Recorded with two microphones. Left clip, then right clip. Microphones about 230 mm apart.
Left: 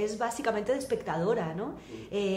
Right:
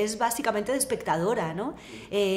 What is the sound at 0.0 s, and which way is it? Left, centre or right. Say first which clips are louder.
A woman's voice: right 4 dB; right.